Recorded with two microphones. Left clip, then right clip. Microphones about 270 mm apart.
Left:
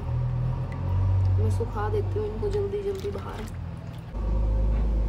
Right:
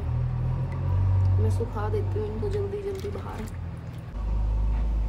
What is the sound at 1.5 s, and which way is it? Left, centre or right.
Speech, centre.